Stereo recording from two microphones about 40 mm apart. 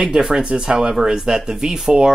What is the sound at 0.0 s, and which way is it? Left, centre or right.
Speech, centre.